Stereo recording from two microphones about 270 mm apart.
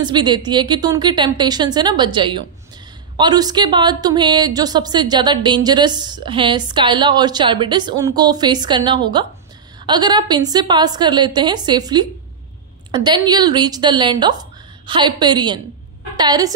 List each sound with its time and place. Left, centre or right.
0.0 s a woman's voice: centre